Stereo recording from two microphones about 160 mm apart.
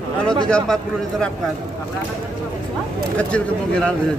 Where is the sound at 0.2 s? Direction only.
5° left (ahead or behind).